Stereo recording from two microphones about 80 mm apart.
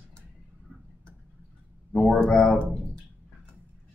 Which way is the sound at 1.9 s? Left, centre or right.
Centre.